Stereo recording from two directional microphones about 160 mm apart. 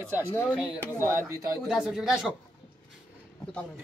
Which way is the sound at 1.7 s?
Centre (ahead or behind).